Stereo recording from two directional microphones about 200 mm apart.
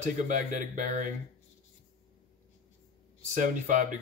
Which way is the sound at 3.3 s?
40° right (ahead or behind).